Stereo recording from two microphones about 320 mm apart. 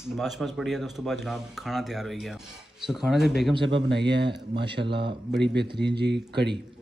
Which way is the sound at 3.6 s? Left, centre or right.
Right.